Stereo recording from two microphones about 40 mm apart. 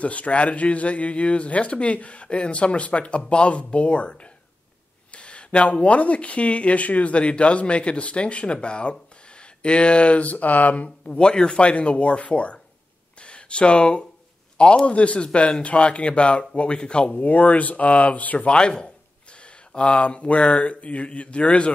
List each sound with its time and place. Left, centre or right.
0.0 s speech: left
11.1 s speech: left
18.5 s speech: left